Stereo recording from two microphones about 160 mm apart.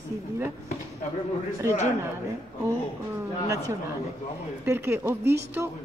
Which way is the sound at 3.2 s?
15° right (ahead or behind).